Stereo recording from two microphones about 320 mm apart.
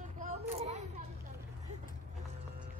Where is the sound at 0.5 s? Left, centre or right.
Right.